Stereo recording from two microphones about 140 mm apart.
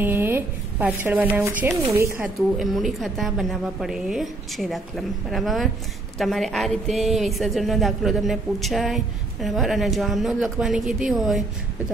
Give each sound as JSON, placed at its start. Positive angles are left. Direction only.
{"t": 0.0, "sound": "a sound", "side_deg": -15}
{"t": 1.7, "sound": "speech", "side_deg": -20}
{"t": 2.6, "sound": "a woman's voice", "side_deg": 0}